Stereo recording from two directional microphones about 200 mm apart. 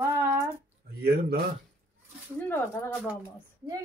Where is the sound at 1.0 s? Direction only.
50° right (ahead or behind).